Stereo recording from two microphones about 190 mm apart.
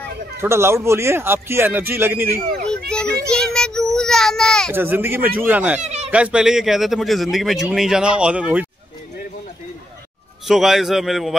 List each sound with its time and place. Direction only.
0.4 s speech: 15° right (ahead or behind)
2.7 s children playing: 5° left (ahead or behind)
3.3 s child singing: 5° left (ahead or behind)
4.7 s speech: 10° right (ahead or behind)
5.8 s a sound: 35° right (ahead or behind)
6.0 s speech: 5° right (ahead or behind)
10.4 s speech: centre (ahead or behind)